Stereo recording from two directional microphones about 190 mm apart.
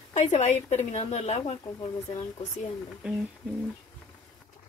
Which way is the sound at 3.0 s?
5° right (ahead or behind).